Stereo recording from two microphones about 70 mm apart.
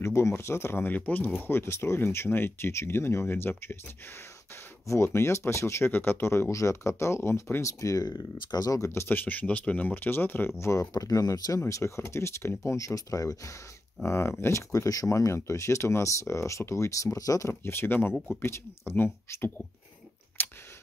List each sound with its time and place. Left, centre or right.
0.0 s speech: left
0.9 s speech: left
1.4 s speech: left
4.8 s speech: left
5.9 s speech: left
6.5 s speech: left
7.8 s speech: left
8.8 s speech: left
9.1 s speech: left
10.6 s speech: left
11.6 s speech: left
14.0 s speech: left
20.4 s a sound: left